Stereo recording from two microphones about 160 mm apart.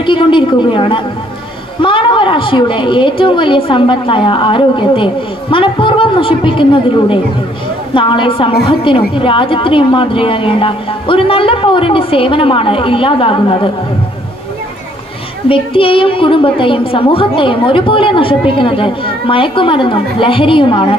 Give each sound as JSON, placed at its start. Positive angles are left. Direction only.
{"t": 0.0, "sound": "a woman's voice", "side_deg": 30}
{"t": 15.4, "sound": "a woman's voice", "side_deg": 35}